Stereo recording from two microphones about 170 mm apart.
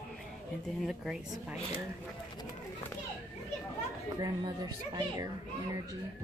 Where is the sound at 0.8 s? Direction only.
Centre (ahead or behind).